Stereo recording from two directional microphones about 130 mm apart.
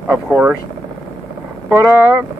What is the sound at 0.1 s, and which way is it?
Speech, 15° right (ahead or behind).